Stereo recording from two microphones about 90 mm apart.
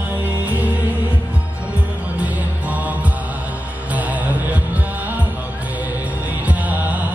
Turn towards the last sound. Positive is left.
turn(degrees=-15)  # may be behind; listen again after turning